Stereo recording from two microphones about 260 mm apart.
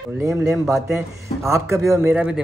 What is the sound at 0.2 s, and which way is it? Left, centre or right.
Speech, centre.